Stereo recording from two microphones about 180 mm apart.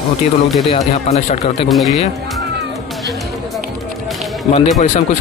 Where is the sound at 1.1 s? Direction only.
35° left (ahead or behind).